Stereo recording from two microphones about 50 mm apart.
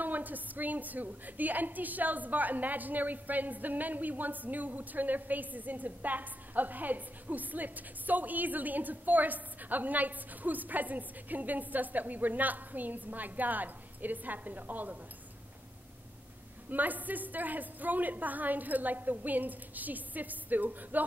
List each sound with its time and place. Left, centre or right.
0.0 s a woman's voice: right
16.6 s a woman's voice: right